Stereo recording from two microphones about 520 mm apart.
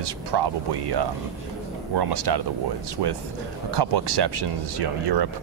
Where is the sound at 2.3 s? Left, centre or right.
Right.